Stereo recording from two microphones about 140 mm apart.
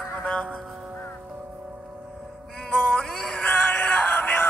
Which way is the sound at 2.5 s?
5° left (ahead or behind).